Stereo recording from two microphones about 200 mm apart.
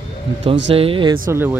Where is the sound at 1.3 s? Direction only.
10° right (ahead or behind).